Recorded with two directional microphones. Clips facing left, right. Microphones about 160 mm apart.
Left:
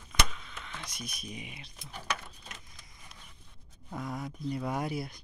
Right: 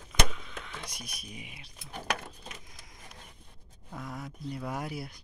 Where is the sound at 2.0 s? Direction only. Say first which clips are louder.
Right 3 dB; 50° right (ahead or behind).